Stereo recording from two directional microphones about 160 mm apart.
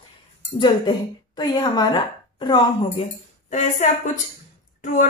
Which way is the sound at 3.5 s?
50° left (ahead or behind).